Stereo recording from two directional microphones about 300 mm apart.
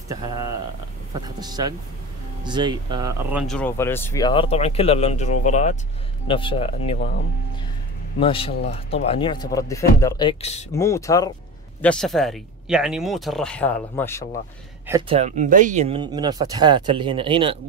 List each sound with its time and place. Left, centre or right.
1.2 s speech: centre
8.2 s speech: centre
14.9 s speech: centre